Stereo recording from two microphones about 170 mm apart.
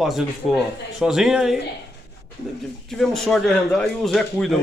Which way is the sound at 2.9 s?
Centre (ahead or behind).